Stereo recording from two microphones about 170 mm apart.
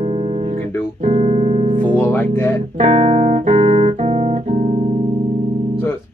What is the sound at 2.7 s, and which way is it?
Music, 40° right (ahead or behind).